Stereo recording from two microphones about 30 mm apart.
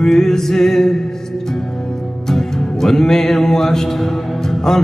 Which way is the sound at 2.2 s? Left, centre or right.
Centre.